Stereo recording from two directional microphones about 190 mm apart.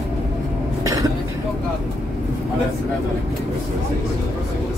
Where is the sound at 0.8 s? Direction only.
15° right (ahead or behind).